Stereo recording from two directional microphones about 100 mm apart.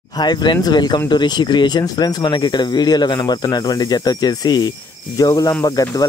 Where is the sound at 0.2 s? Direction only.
45° left (ahead or behind).